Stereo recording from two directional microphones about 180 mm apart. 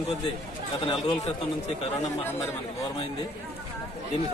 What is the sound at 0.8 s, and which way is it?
Speech, 25° left (ahead or behind).